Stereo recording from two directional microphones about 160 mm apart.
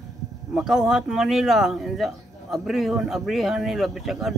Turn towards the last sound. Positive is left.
turn(degrees=0)  # may be behind; listen again after turning